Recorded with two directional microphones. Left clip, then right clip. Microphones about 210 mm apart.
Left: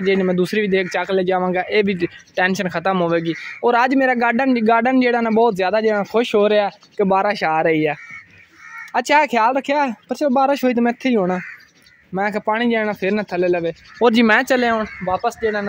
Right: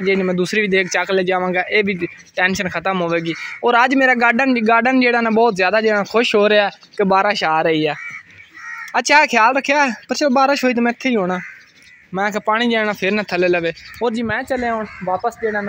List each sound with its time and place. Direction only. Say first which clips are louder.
0.0 s a man's voice: even; 10° left (ahead or behind)
13.9 s speech: left 8 dB; 30° left (ahead or behind)
14.2 s speech: left 5 dB; 50° left (ahead or behind)
15.0 s a man's voice: right 1 dB; 5° left (ahead or behind)